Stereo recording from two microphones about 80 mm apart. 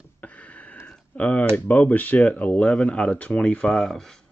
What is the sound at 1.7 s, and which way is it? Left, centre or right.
Speech, centre.